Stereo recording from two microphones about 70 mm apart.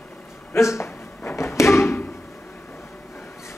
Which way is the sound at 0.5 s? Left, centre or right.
Left.